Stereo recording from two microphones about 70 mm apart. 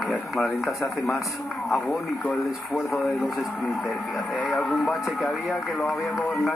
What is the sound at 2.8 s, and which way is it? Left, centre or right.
Speech, centre.